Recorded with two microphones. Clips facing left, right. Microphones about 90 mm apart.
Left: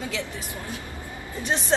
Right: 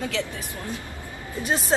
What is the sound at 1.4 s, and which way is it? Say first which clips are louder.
Speech: right 1 dB; 5° right (ahead or behind).